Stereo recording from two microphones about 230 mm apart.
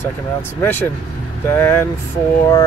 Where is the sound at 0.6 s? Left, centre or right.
Centre.